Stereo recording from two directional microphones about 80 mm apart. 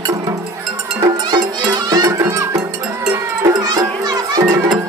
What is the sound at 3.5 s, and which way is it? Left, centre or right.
Music, right.